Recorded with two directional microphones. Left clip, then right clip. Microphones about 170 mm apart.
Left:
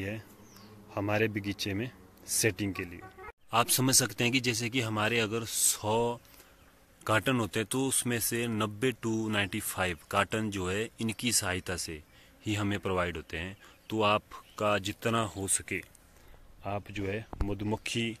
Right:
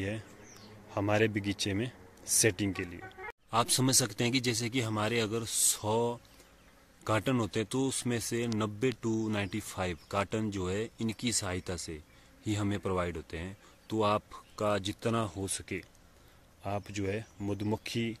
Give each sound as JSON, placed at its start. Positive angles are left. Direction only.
{"t": 0.8, "sound": "speech", "side_deg": 0}
{"t": 3.0, "sound": "a sound", "side_deg": 70}
{"t": 3.4, "sound": "speech", "side_deg": 0}